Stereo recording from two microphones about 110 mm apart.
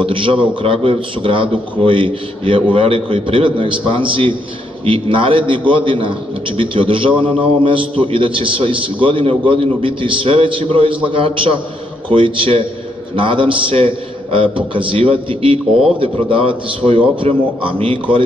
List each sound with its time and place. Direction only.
0.0 s a man's voice: 50° right (ahead or behind)